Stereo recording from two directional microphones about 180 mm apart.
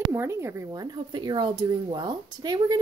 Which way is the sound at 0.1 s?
15° right (ahead or behind).